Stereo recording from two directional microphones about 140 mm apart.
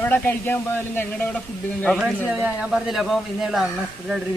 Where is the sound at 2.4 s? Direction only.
5° right (ahead or behind).